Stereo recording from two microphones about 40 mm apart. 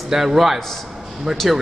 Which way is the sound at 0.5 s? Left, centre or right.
Centre.